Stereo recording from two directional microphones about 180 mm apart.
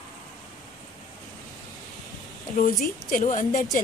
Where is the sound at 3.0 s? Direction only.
45° left (ahead or behind).